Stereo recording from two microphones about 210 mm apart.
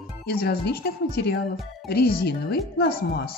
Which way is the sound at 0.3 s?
50° left (ahead or behind).